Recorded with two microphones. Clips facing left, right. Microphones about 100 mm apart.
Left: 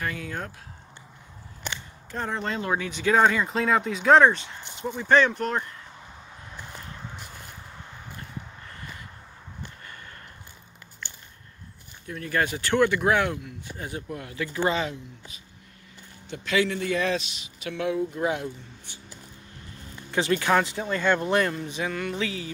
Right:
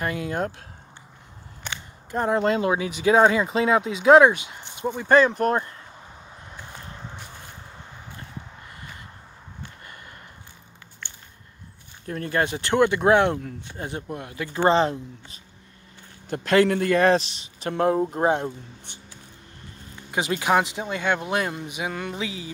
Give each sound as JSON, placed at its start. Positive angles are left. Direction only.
{"t": 0.0, "sound": "speech", "side_deg": -25}
{"t": 2.0, "sound": "speech", "side_deg": -20}
{"t": 4.8, "sound": "speech", "side_deg": -25}
{"t": 12.3, "sound": "speech", "side_deg": -25}
{"t": 14.7, "sound": "speech", "side_deg": -35}
{"t": 16.3, "sound": "speech", "side_deg": -50}
{"t": 20.1, "sound": "speech", "side_deg": -15}